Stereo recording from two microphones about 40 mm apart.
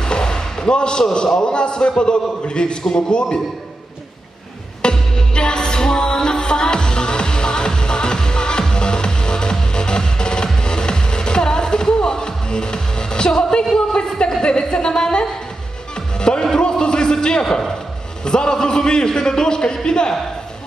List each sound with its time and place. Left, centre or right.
0.0 s a man's voice: centre
4.8 s music: centre
16.4 s a sound: centre
18.2 s a man's voice: centre